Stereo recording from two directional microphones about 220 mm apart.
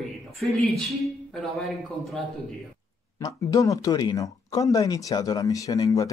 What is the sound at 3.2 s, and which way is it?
Speech, 15° left (ahead or behind).